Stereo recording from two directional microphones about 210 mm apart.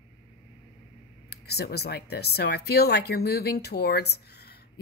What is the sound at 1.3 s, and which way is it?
Speech, 50° left (ahead or behind).